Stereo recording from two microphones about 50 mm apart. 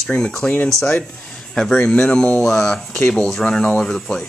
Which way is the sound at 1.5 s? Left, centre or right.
Centre.